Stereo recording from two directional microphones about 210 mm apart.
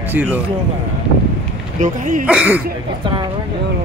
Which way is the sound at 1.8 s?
35° right (ahead or behind).